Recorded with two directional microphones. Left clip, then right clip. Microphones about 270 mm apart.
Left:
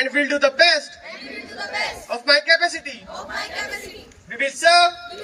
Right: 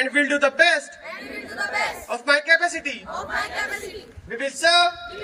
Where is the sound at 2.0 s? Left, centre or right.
Right.